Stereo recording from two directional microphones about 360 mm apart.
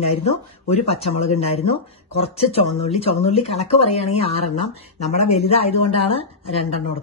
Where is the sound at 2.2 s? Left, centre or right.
Centre.